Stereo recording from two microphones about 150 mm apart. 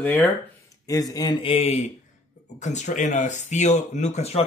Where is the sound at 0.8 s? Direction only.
25° left (ahead or behind); by 1.8 s 40° left (ahead or behind).